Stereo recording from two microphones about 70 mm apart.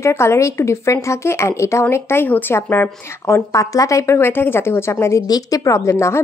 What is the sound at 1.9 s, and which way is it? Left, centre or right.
A woman's voice, left.